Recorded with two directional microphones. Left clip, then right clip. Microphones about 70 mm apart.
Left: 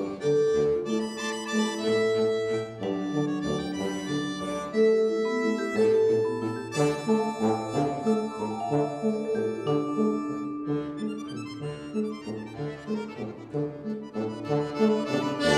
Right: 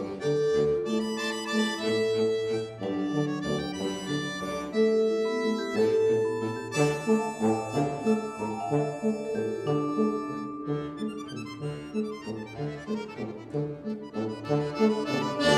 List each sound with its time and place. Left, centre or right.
0.2 s music: left
13.6 s accordion: left